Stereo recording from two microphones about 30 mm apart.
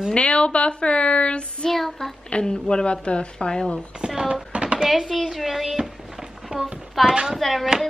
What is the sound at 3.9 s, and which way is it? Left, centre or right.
Speech, right.